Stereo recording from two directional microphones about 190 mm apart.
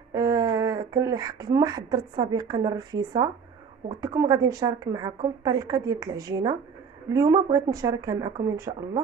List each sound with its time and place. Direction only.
0.1 s a woman's voice: 20° right (ahead or behind)